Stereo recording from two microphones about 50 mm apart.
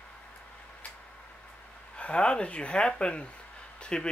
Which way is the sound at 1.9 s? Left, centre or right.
Left.